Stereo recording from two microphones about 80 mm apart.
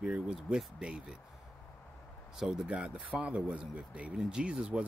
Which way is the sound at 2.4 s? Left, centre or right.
Centre.